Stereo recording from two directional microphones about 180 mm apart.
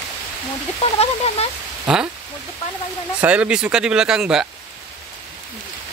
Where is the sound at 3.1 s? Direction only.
5° right (ahead or behind).